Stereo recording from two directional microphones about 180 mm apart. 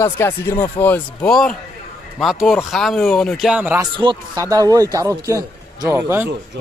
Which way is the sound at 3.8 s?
25° right (ahead or behind).